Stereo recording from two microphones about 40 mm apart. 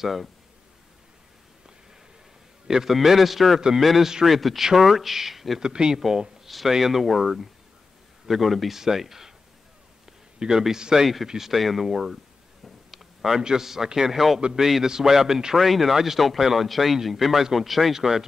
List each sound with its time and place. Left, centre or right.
0.0 s speech: centre
2.7 s speech: centre
5.6 s a man's voice: centre
10.4 s a man's voice: right; by 12.2 s centre
12.6 s a sound: centre
13.4 s a man's voice: centre